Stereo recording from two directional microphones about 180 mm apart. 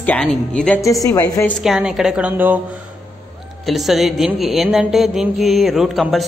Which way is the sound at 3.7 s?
Centre (ahead or behind).